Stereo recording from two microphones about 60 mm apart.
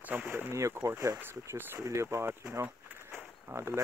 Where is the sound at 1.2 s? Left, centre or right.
Right.